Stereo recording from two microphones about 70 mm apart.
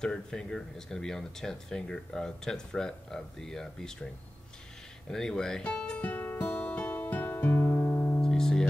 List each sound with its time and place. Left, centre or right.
0.0 s speech: centre
5.1 s speech: centre
5.6 s speech: left
5.9 s music: left
8.2 s music: centre